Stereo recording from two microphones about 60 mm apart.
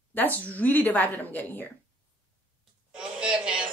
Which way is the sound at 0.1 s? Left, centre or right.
Left.